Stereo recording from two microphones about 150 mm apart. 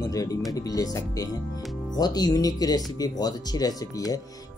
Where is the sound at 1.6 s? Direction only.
Centre (ahead or behind).